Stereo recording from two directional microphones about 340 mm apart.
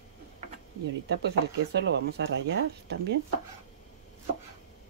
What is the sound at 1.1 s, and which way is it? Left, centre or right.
Speech, right.